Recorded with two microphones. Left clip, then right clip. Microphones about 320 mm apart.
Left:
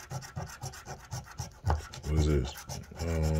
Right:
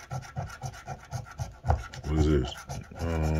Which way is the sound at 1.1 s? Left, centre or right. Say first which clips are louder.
Right 2 dB; left.